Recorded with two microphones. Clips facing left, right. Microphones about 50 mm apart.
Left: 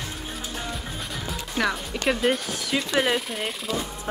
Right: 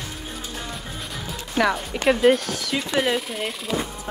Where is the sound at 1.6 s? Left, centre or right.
Centre.